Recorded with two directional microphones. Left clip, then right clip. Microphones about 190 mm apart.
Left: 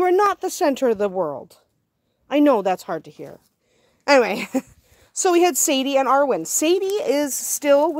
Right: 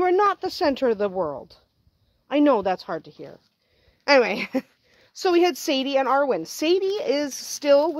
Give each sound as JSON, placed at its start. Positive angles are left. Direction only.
{"t": 0.0, "sound": "a woman's voice", "side_deg": 30}